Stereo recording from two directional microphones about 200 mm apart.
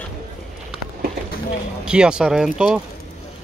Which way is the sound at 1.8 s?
5° right (ahead or behind).